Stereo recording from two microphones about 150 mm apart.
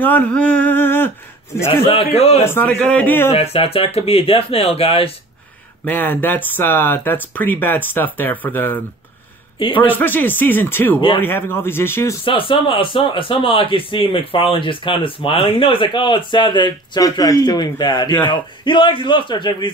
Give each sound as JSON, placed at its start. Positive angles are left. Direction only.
{"t": 0.0, "sound": "speech", "side_deg": 10}
{"t": 2.1, "sound": "a man's voice", "side_deg": 45}
{"t": 2.4, "sound": "speech", "side_deg": 10}
{"t": 3.3, "sound": "speech", "side_deg": 40}
{"t": 5.9, "sound": "speech", "side_deg": 10}
{"t": 9.6, "sound": "a man's voice", "side_deg": 35}
{"t": 9.8, "sound": "speech", "side_deg": 10}
{"t": 11.0, "sound": "speech", "side_deg": 35}
{"t": 11.2, "sound": "speech", "side_deg": 15}
{"t": 12.3, "sound": "speech", "side_deg": 35}